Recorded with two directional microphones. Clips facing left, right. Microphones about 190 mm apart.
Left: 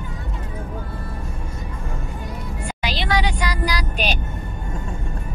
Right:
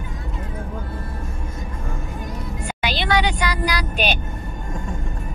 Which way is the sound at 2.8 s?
60° right (ahead or behind).